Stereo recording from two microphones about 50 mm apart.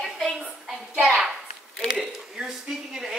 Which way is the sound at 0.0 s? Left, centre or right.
Centre.